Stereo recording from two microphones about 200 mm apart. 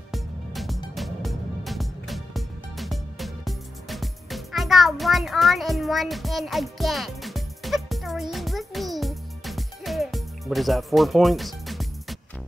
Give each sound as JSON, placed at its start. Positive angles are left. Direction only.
{"t": 0.1, "sound": "music", "side_deg": 0}